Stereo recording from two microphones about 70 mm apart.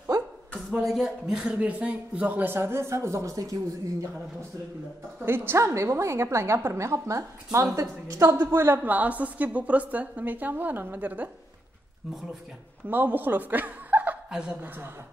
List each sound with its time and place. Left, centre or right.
0.7 s a woman's voice: centre; by 2.5 s right
2.5 s a woman's voice: right
5.2 s a woman's voice: right
8.4 s a woman's voice: right
8.8 s a woman's voice: right
12.8 s a woman's voice: right
14.3 s a woman's voice: centre